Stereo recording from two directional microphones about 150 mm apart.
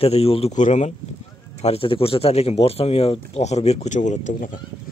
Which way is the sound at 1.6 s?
40° left (ahead or behind).